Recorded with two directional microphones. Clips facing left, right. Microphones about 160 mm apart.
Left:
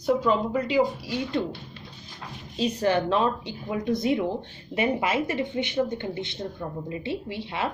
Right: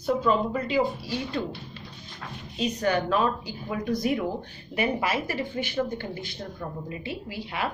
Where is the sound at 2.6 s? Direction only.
30° left (ahead or behind).